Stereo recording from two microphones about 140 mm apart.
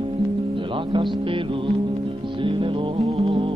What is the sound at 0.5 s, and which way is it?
Music, 35° right (ahead or behind).